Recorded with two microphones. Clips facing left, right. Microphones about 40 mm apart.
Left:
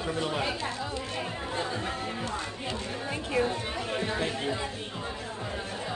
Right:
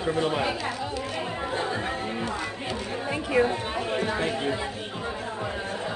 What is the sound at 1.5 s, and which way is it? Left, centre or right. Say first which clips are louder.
Speech: right 3 dB; right.